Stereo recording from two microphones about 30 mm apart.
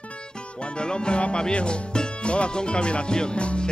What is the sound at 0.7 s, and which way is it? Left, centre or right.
Speech, left.